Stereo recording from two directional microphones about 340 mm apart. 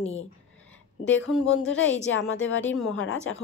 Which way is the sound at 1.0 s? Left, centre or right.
Left.